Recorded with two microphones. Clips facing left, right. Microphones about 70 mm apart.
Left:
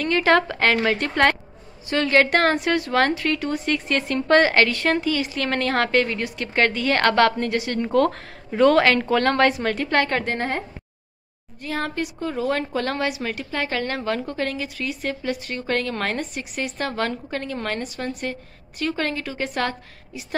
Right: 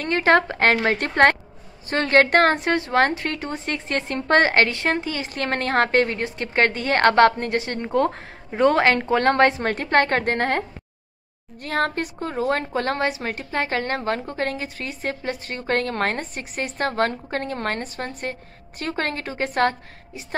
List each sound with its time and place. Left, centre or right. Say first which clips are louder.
0.0 s a woman's voice: even; right
11.6 s a woman's voice: right 3 dB; right